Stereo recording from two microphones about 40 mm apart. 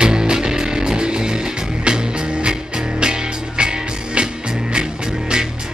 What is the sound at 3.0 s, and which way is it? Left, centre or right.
Music, right.